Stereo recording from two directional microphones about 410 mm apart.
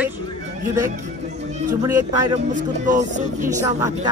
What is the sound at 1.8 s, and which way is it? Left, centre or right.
Speech, centre.